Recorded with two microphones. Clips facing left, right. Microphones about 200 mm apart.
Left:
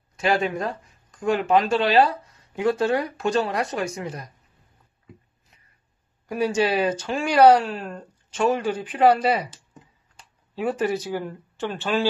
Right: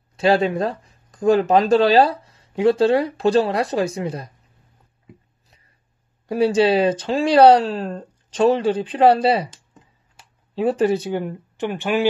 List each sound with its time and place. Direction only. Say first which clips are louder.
0.1 s speech: right 5 dB; 30° right (ahead or behind)
6.2 s speech: right 6 dB; 30° right (ahead or behind)
10.5 s speech: right 6 dB; 30° right (ahead or behind); by 12.1 s 15° right (ahead or behind)